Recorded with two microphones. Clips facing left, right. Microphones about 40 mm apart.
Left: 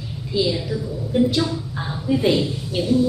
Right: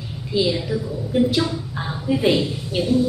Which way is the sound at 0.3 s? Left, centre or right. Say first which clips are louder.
Right 1 dB; centre.